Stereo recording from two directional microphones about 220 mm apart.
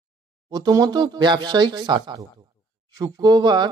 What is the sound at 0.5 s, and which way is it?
Speech, 15° right (ahead or behind).